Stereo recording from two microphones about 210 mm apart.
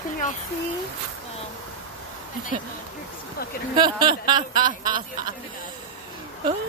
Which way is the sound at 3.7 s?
20° right (ahead or behind).